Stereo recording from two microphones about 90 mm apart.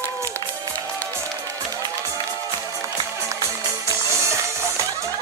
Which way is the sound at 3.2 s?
30° right (ahead or behind).